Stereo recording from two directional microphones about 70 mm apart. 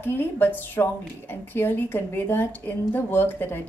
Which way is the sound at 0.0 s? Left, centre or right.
Left.